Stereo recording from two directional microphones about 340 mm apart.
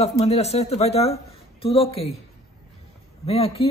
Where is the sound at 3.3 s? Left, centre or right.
Centre.